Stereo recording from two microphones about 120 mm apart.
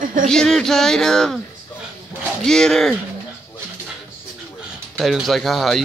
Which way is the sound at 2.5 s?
5° left (ahead or behind).